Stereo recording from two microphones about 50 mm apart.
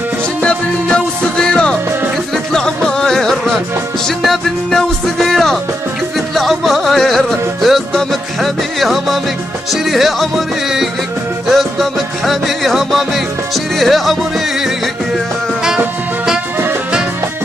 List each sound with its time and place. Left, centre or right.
0.4 s music: centre
11.4 s music: centre